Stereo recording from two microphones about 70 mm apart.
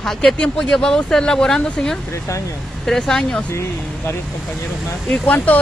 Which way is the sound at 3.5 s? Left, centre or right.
Left.